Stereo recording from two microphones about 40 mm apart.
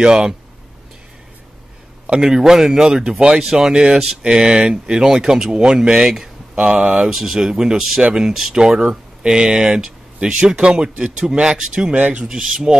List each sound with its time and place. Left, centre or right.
0.0 s speech: centre
2.0 s speech: centre
3.3 s speech: centre
6.5 s speech: right
7.0 s speech: centre
11.9 s speech: right
12.3 s speech: right